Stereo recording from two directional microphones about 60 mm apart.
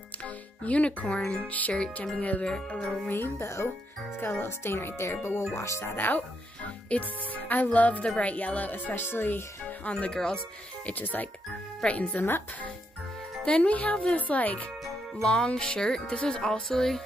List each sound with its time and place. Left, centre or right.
0.2 s speech: left
2.4 s speech: centre
3.1 s speech: left
6.0 s speech: left
9.8 s speech: left
10.9 s speech: left
11.8 s speech: centre
13.5 s speech: centre
15.1 s speech: centre